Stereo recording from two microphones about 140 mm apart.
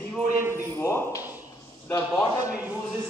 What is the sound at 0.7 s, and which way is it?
Speech, 20° left (ahead or behind).